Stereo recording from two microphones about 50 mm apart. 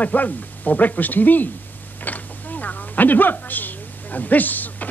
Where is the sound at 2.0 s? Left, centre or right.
Left.